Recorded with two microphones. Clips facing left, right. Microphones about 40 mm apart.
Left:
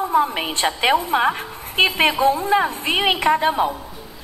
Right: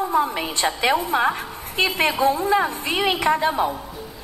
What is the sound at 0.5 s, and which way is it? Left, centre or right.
A man's voice, left.